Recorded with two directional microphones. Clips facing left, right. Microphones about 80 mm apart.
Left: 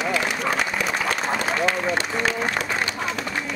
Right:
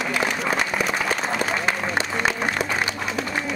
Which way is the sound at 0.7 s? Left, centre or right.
Centre.